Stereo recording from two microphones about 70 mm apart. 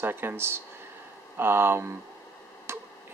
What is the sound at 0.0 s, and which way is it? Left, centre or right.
Speech, right.